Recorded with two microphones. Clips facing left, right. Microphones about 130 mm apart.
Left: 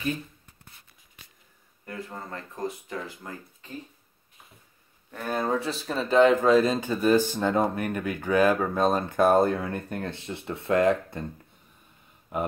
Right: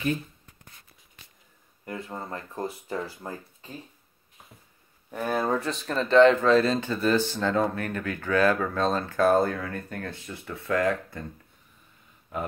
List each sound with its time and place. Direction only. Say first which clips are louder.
2.0 s speech: right 2 dB; 25° right (ahead or behind)
5.1 s speech: right 1 dB; 5° right (ahead or behind); by 11.2 s 20° left (ahead or behind)
12.3 s speech: left 3 dB; 20° left (ahead or behind)